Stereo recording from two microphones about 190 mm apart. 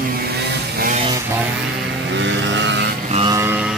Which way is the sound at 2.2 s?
70° right (ahead or behind).